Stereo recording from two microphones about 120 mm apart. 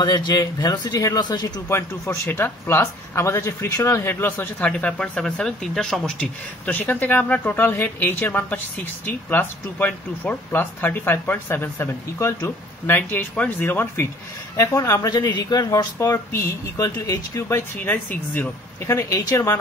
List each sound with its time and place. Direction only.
0.0 s speech: 35° left (ahead or behind)
2.0 s speech: 15° left (ahead or behind)